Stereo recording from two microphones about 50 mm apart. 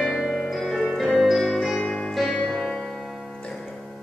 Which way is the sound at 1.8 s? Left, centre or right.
Left.